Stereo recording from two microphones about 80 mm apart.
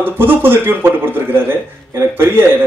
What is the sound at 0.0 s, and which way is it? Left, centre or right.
Speech, right.